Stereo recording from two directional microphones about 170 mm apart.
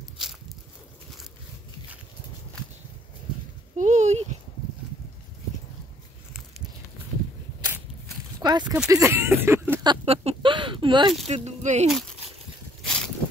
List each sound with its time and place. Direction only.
3.7 s speech: 45° right (ahead or behind)
8.4 s speech: 25° right (ahead or behind)
9.8 s speech: 35° right (ahead or behind)
11.2 s speech: 40° right (ahead or behind)
12.8 s a sound: centre (ahead or behind)